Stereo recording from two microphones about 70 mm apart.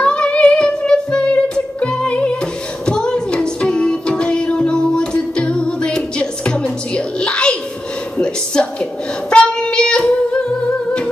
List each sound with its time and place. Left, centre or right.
0.0 s music: centre
8.5 s a sound: centre
9.3 s singing: centre